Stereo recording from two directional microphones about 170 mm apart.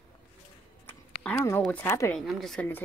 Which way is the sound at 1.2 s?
15° left (ahead or behind).